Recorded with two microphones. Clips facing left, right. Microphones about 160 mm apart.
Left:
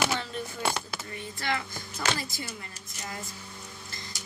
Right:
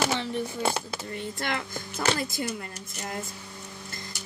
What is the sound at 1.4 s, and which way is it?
Speech, 55° right (ahead or behind).